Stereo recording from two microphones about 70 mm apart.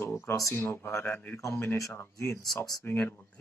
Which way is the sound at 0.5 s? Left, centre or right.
Left.